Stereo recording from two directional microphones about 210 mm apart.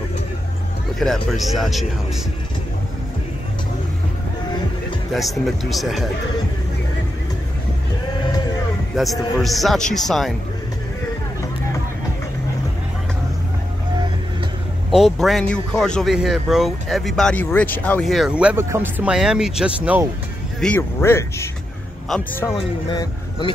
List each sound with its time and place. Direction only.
0.9 s speech: centre (ahead or behind)
5.4 s speech: centre (ahead or behind)
8.9 s speech: centre (ahead or behind)
14.9 s speech: centre (ahead or behind)
20.6 s speech: 10° left (ahead or behind)
22.1 s speech: centre (ahead or behind)
22.5 s speech: 20° left (ahead or behind)